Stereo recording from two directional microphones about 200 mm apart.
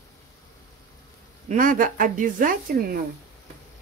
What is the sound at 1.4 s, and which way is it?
Speech, 40° right (ahead or behind).